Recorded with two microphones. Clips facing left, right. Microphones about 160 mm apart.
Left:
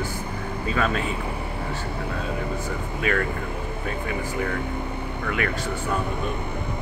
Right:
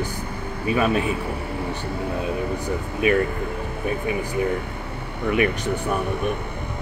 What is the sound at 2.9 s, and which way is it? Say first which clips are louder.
Speech: right 6 dB; 20° right (ahead or behind).